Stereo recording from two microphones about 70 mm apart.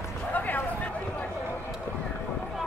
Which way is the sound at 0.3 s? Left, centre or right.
Left.